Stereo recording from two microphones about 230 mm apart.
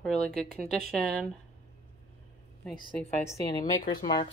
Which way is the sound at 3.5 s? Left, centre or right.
Centre.